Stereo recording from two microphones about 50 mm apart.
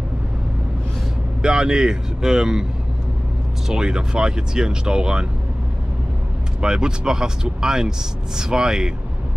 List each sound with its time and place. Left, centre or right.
1.4 s speech: centre
3.6 s speech: centre
6.6 s speech: centre